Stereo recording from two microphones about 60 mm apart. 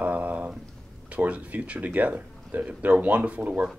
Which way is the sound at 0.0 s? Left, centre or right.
Right.